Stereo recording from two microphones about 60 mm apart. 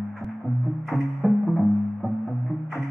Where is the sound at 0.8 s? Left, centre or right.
Centre.